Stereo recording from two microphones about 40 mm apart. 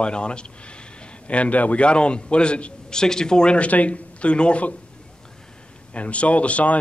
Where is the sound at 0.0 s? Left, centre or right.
Left.